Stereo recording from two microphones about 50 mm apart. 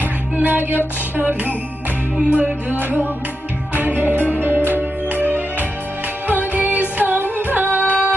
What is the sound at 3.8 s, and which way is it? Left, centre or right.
Music, right.